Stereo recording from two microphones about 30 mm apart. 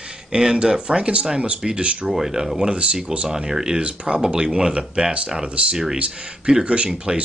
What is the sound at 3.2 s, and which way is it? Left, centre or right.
Speech, centre.